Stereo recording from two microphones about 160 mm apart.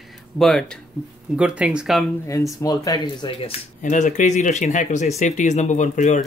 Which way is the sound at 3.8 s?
50° left (ahead or behind).